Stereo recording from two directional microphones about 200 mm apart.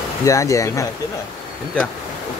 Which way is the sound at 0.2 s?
15° left (ahead or behind).